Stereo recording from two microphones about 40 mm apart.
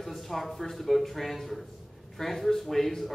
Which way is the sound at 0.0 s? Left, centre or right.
Centre.